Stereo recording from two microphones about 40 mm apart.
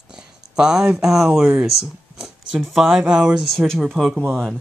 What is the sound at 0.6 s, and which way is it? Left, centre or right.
Speech, centre.